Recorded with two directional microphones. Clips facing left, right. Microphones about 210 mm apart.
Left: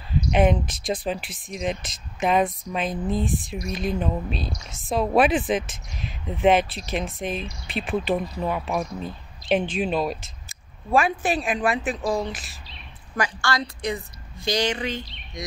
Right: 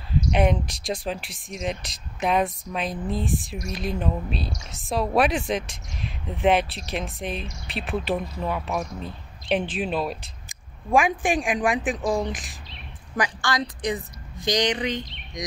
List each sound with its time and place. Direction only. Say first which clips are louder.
0.3 s speech: left 3 dB; centre (ahead or behind)
10.9 s a woman's voice: right 1 dB; 15° right (ahead or behind)